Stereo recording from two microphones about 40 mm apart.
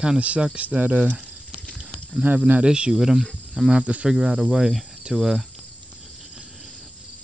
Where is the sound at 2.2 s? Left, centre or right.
Right.